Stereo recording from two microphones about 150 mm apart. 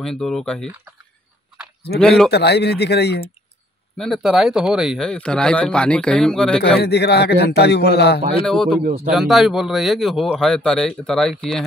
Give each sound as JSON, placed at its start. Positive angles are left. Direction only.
{"t": 0.0, "sound": "speech", "side_deg": 5}
{"t": 2.0, "sound": "speech", "side_deg": 0}
{"t": 2.3, "sound": "a man's voice", "side_deg": 90}
{"t": 4.0, "sound": "speech", "side_deg": 0}
{"t": 6.8, "sound": "a man's voice", "side_deg": 90}
{"t": 8.5, "sound": "speech", "side_deg": 5}